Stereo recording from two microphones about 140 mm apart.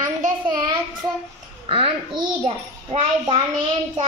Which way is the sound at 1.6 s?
40° right (ahead or behind).